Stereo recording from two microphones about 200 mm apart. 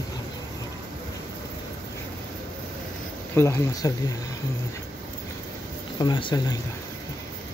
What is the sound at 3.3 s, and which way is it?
Speech, 15° left (ahead or behind).